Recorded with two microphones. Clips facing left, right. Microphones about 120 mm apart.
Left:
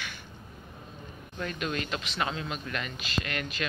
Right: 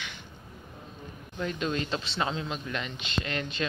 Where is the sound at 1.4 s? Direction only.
25° right (ahead or behind).